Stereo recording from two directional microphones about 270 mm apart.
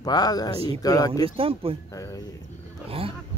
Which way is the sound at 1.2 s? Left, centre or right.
Right.